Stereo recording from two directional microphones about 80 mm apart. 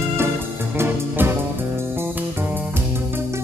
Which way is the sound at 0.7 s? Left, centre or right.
Right.